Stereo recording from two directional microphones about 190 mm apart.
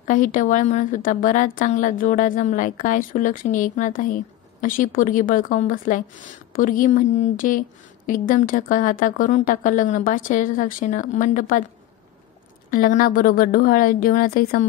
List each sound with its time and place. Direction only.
0.0 s a woman's voice: 45° left (ahead or behind)
12.7 s a woman's voice: 45° left (ahead or behind)